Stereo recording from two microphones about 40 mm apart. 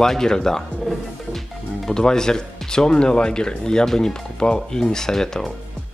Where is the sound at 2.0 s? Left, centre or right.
Centre.